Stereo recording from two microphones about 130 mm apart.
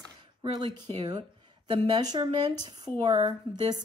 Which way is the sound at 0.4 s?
35° right (ahead or behind).